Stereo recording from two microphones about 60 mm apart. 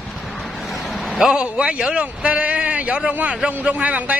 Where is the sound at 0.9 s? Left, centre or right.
Centre; by 4.1 s right.